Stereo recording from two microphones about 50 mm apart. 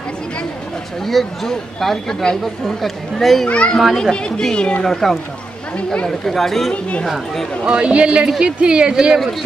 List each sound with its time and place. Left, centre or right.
1.0 s speech: centre
3.4 s a child's voice: left
4.8 s speech: centre
6.7 s a child's voice: left
7.6 s speech: right